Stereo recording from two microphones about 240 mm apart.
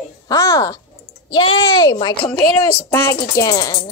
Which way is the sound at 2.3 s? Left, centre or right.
Centre.